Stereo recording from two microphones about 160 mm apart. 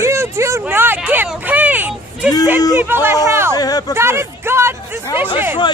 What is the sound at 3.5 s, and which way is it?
Speech, 25° left (ahead or behind).